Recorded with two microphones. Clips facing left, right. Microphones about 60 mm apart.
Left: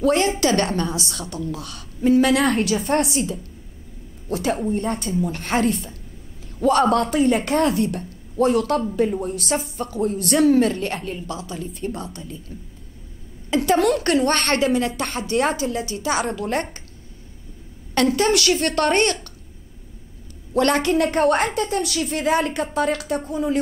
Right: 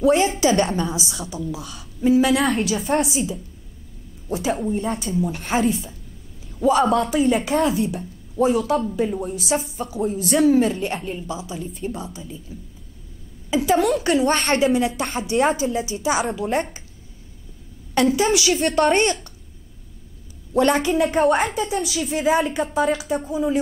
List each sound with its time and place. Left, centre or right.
0.0 s a woman's voice: centre
18.1 s a woman's voice: centre
20.5 s a woman's voice: centre